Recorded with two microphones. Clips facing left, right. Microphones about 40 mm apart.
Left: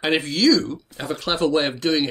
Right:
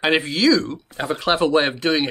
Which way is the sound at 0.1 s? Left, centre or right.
Right.